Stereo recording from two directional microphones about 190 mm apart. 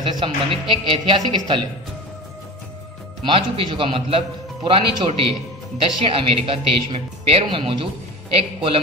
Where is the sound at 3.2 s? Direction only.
25° right (ahead or behind).